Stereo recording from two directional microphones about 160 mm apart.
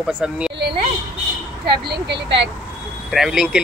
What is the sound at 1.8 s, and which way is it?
Speech, 90° right.